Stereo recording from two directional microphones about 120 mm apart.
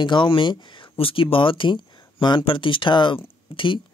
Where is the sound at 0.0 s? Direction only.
40° left (ahead or behind).